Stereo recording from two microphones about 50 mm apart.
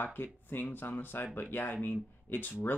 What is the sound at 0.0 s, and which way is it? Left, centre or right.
Speech, left.